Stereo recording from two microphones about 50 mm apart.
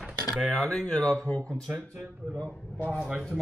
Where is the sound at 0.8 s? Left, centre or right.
Centre.